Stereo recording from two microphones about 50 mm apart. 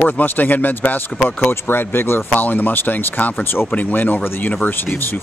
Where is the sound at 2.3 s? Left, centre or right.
Left.